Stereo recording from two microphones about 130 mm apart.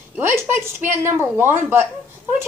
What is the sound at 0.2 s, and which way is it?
A child's voice, 20° right (ahead or behind).